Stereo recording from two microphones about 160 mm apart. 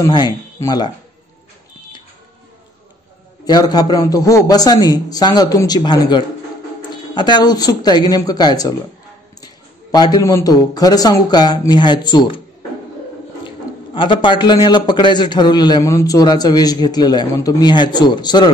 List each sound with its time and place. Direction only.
0.0 s a man's voice: 25° left (ahead or behind)
3.4 s a man's voice: 25° left (ahead or behind)
13.9 s a man's voice: 30° left (ahead or behind)